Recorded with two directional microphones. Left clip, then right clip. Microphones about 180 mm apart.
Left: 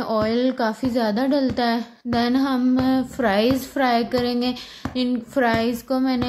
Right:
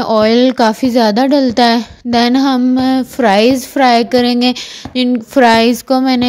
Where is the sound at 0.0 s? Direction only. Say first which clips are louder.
Right 11 dB; 45° right (ahead or behind).